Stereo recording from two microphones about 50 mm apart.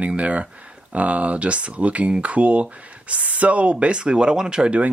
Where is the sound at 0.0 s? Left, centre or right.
Right.